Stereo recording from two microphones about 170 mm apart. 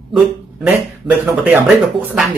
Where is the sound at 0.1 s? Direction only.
5° right (ahead or behind).